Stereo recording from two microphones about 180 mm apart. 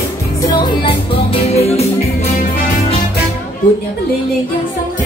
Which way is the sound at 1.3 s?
35° left (ahead or behind).